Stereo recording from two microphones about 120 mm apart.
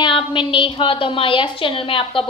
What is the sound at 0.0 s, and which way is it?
A woman's voice, 45° left (ahead or behind).